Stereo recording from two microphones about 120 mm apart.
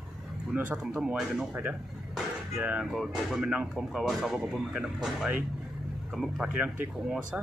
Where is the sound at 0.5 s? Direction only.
15° right (ahead or behind).